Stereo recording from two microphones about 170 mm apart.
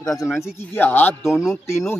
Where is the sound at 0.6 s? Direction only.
10° left (ahead or behind).